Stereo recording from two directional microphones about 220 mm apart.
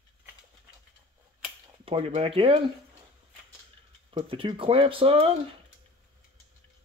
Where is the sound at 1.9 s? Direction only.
25° right (ahead or behind).